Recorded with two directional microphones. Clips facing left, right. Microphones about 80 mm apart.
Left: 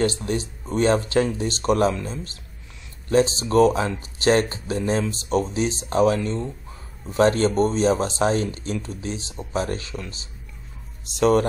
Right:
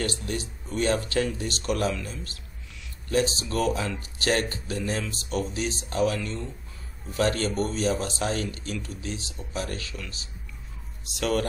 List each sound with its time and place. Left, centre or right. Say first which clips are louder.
0.0 s speech: left 7 dB; left